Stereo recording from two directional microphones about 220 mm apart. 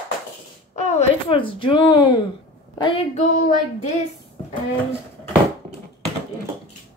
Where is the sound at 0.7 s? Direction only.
30° left (ahead or behind).